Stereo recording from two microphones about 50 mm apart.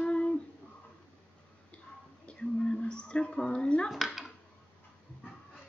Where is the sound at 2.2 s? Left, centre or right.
Centre.